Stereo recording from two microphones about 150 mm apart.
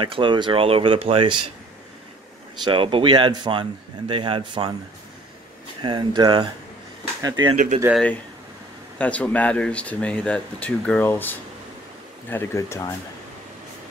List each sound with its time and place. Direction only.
0.0 s speech: 35° right (ahead or behind)
2.6 s speech: 35° right (ahead or behind)
5.8 s speech: 30° right (ahead or behind)
8.9 s speech: 10° left (ahead or behind)